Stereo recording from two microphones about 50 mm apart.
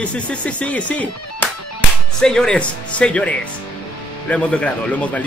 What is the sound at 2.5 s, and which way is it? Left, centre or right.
Speech, left.